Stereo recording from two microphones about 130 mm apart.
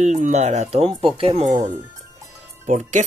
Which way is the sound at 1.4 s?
65° right (ahead or behind).